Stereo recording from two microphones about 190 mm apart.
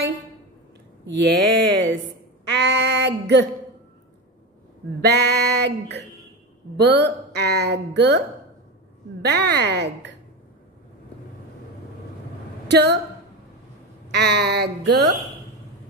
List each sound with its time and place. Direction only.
1.0 s speech: 65° right (ahead or behind)
2.4 s a sound: 65° right (ahead or behind)
5.0 s speech: 60° right (ahead or behind)
9.2 s speech: 65° right (ahead or behind)
12.6 s a woman's voice: 65° right (ahead or behind)
14.1 s speech: 60° right (ahead or behind)